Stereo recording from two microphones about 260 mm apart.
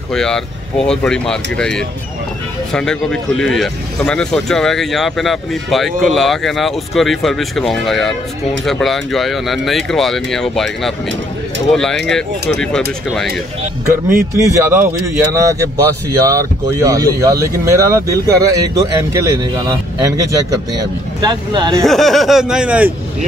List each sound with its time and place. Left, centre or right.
0.1 s speech: centre
14.0 s speech: centre
21.2 s speech: centre
21.8 s speech: centre